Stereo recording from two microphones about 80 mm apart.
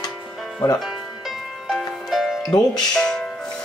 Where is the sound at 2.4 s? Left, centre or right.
Left.